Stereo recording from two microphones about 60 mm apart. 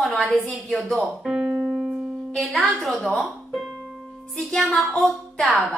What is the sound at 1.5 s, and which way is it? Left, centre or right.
Keyboard, right.